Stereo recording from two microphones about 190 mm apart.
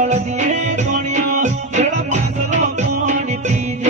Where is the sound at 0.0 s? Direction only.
40° right (ahead or behind).